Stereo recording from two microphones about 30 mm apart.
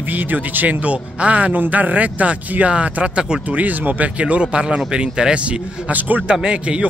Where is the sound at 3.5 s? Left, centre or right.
Right.